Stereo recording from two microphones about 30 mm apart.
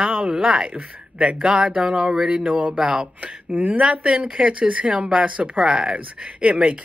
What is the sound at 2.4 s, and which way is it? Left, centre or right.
A woman's voice, right.